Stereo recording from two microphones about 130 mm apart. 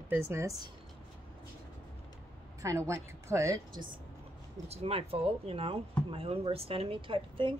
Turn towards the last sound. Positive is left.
turn(degrees=-40)  # may be behind; listen again after turning